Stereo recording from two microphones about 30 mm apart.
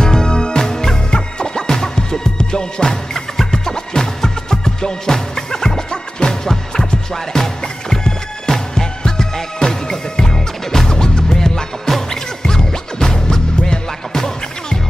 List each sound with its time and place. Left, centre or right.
0.0 s music: left